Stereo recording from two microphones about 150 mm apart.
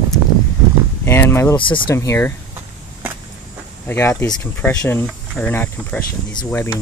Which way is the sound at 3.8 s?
15° left (ahead or behind).